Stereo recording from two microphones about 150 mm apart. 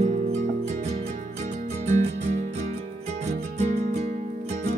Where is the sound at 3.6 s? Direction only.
45° right (ahead or behind).